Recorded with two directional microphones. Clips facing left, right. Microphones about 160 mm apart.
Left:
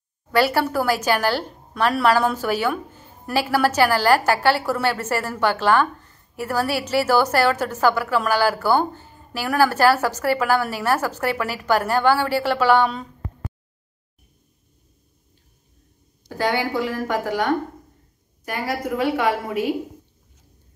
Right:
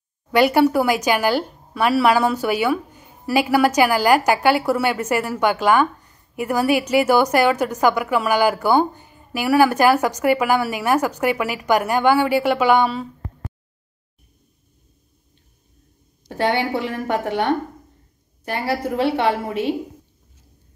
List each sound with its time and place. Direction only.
0.3 s a woman's voice: 15° right (ahead or behind)
16.3 s a woman's voice: 25° right (ahead or behind)